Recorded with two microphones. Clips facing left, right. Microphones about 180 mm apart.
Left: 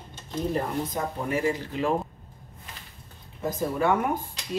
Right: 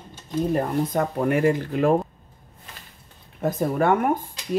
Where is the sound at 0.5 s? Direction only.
60° right (ahead or behind).